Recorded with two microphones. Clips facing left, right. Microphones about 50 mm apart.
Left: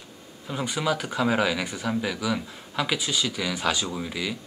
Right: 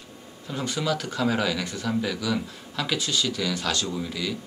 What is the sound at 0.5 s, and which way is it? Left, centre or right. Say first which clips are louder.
Speech: left 1 dB; centre.